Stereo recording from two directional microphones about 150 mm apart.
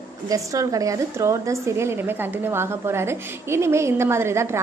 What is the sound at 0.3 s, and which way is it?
A woman's voice, 20° right (ahead or behind).